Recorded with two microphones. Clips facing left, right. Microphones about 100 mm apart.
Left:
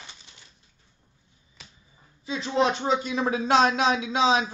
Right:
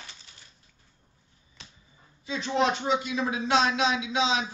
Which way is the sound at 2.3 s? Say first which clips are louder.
Left 2 dB; 35° left (ahead or behind).